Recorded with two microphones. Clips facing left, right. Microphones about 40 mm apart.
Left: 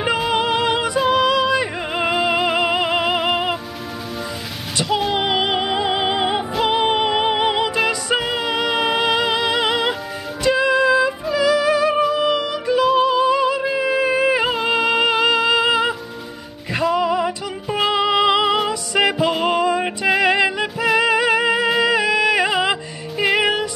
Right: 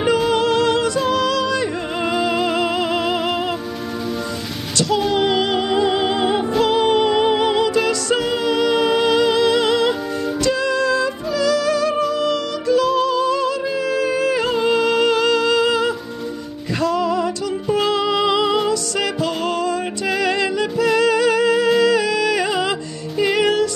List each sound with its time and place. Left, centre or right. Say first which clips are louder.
0.0 s music: right 2 dB; centre
4.7 s music: right 2 dB; centre